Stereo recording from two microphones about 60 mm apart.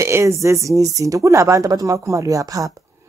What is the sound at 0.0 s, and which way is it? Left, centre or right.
Speech, right.